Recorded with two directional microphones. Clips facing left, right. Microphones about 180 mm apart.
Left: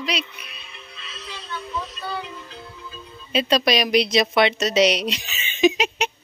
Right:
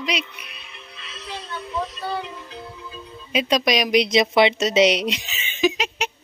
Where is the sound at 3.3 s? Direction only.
15° right (ahead or behind).